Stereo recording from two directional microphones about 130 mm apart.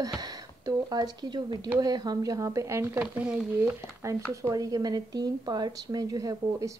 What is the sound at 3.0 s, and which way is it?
Speech, 10° right (ahead or behind).